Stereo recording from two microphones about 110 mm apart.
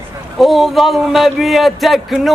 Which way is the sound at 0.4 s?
Centre (ahead or behind).